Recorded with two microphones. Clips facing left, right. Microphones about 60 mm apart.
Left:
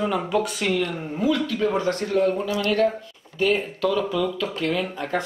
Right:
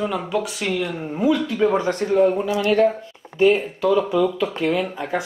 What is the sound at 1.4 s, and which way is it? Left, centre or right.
Speech, right.